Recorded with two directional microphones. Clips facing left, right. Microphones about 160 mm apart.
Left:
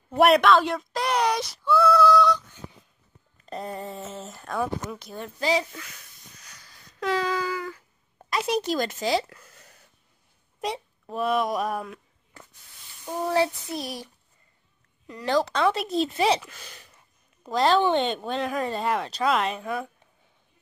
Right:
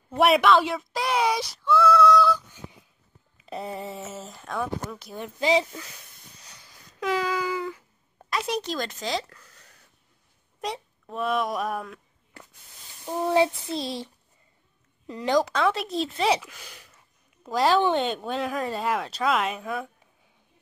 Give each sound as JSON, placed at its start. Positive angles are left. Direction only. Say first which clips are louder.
{"t": 0.1, "sound": "speech", "louder": "left 1 dB", "side_deg": 0}
{"t": 1.7, "sound": "a sound", "louder": "even", "side_deg": 0}
{"t": 3.3, "sound": "speech", "louder": "even", "side_deg": -5}
{"t": 7.0, "sound": "speech", "louder": "even", "side_deg": -10}
{"t": 7.5, "sound": "a sound", "louder": "right 2 dB", "side_deg": -20}
{"t": 8.2, "sound": "speech", "louder": "left 2 dB", "side_deg": 0}
{"t": 10.6, "sound": "speech", "louder": "left 2 dB", "side_deg": 0}
{"t": 13.3, "sound": "child singing", "louder": "right 2 dB", "side_deg": -20}
{"t": 15.0, "sound": "speech", "louder": "right 1 dB", "side_deg": -20}
{"t": 15.5, "sound": "speech", "louder": "left 1 dB", "side_deg": 0}